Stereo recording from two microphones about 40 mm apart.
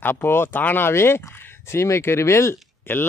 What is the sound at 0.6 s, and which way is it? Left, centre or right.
Speech, left.